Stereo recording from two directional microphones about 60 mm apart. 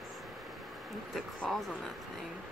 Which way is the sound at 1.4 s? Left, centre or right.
Centre.